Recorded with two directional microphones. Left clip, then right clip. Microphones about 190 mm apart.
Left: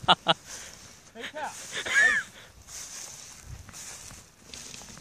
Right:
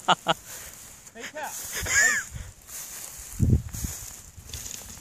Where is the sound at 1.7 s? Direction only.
Centre (ahead or behind).